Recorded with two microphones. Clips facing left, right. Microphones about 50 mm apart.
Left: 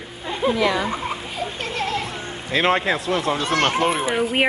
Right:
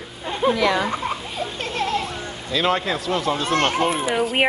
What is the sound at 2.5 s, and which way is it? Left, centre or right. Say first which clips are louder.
Speech: left 2 dB; left.